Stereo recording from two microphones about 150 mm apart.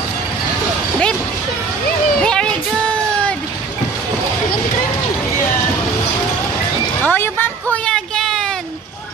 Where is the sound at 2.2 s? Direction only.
5° left (ahead or behind).